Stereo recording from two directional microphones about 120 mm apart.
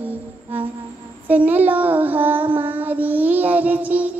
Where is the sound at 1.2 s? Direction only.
15° right (ahead or behind).